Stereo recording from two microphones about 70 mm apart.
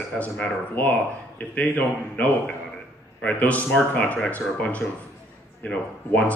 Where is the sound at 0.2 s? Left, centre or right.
Left.